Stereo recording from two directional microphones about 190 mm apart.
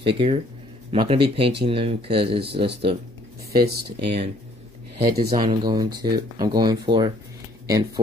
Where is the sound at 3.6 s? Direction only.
55° right (ahead or behind).